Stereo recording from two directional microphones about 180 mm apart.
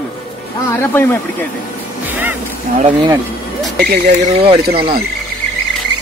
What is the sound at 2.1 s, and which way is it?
Music, 10° right (ahead or behind).